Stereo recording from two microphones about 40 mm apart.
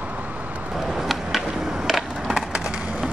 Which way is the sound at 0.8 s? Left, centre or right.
Centre.